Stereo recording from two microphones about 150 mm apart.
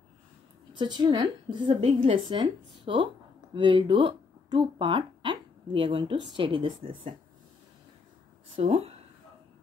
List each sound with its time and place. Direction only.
0.7 s a woman's voice: 30° right (ahead or behind)
2.2 s a woman's voice: 35° right (ahead or behind)
8.5 s a woman's voice: 40° right (ahead or behind)